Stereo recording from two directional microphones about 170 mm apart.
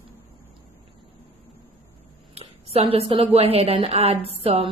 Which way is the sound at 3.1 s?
35° right (ahead or behind).